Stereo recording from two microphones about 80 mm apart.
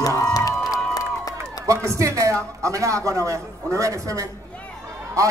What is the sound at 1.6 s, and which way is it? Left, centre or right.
A man's voice, right.